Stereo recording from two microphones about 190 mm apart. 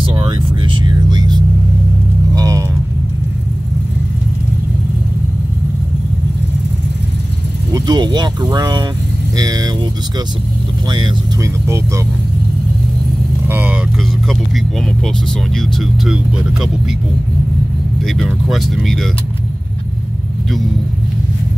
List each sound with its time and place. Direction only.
0.0 s vehicle: 25° right (ahead or behind)
7.7 s speech: 20° right (ahead or behind)
10.9 s speech: 25° right (ahead or behind)
13.5 s speech: 10° right (ahead or behind)
15.5 s speech: centre (ahead or behind)
18.0 s speech: centre (ahead or behind)